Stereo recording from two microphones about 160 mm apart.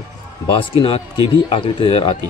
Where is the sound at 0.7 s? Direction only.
35° left (ahead or behind).